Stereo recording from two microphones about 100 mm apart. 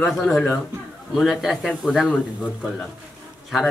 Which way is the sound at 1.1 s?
Centre (ahead or behind).